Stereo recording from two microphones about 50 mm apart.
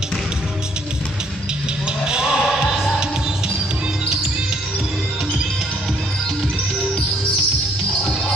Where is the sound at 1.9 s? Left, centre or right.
Centre.